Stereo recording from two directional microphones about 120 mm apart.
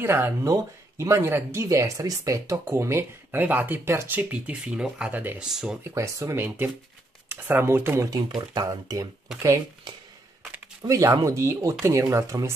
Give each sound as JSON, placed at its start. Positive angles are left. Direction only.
{"t": 0.0, "sound": "speech", "side_deg": -20}
{"t": 5.5, "sound": "speech", "side_deg": -5}
{"t": 5.9, "sound": "speech", "side_deg": -25}
{"t": 8.4, "sound": "speech", "side_deg": -35}
{"t": 10.8, "sound": "speech", "side_deg": -30}